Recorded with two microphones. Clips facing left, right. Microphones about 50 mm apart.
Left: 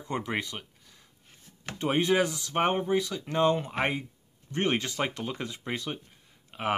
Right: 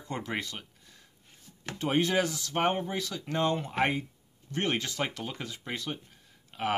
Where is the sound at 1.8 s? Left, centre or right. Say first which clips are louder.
Left 2 dB; centre.